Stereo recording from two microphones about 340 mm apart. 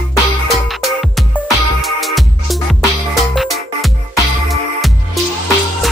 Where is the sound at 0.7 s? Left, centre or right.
Centre.